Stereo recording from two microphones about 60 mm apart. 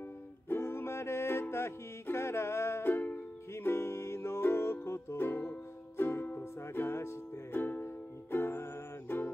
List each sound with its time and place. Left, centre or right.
0.5 s music: left